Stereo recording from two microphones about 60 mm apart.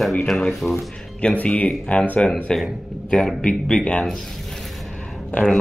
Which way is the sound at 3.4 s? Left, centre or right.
Centre.